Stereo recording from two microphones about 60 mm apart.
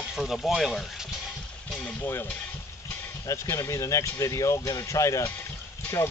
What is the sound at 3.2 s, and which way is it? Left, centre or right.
Speech, left.